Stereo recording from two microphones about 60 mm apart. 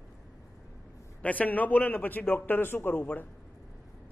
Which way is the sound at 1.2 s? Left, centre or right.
Left.